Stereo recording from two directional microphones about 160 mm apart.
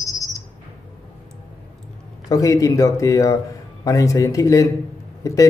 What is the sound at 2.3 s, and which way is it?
Speech, 20° left (ahead or behind).